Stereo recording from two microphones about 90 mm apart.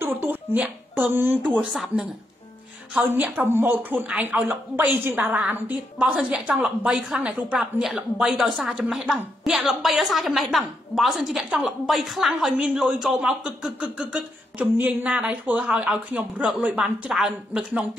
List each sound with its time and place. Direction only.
0.0 s a sound: 20° right (ahead or behind)
1.7 s speech: centre (ahead or behind)
3.0 s a woman's voice: 20° right (ahead or behind)
7.5 s a woman's voice: 5° right (ahead or behind)